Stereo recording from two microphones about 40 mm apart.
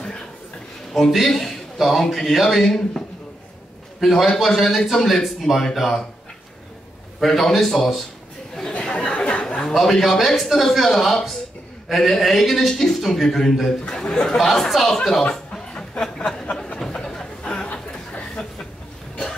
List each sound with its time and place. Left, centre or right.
1.1 s a man's voice: centre
4.0 s a man's voice: centre
7.2 s speech: centre
9.0 s chatter: left
9.7 s a man's voice: centre
13.8 s a sound: centre
14.3 s a man's voice: centre
16.2 s a sound: left